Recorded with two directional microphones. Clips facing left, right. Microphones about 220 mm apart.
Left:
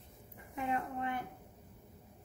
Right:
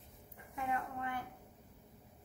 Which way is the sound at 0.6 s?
20° left (ahead or behind).